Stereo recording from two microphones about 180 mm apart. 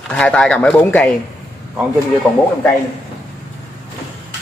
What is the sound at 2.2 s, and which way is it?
Speech, 10° left (ahead or behind).